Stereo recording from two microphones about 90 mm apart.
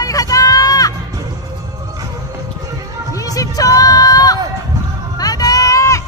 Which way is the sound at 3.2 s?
40° left (ahead or behind).